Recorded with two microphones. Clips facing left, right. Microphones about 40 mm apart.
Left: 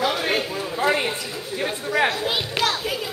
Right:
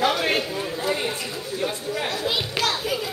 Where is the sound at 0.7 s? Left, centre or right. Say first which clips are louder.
Left 6 dB; left.